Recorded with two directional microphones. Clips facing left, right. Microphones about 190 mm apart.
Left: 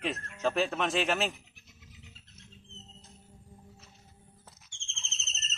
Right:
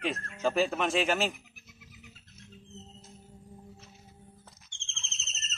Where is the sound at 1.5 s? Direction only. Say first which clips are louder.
Right 2 dB; 25° left (ahead or behind).